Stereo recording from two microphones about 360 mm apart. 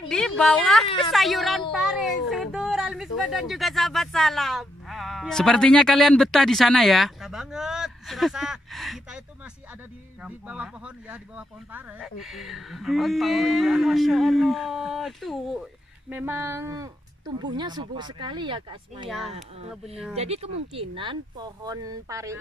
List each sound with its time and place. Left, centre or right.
0.1 s speech: centre
1.1 s a sound: centre
10.2 s speech: centre
19.0 s speech: centre
19.3 s speech: centre